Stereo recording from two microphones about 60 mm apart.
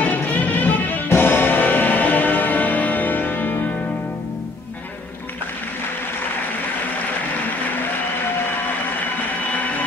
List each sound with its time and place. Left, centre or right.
0.0 s music: left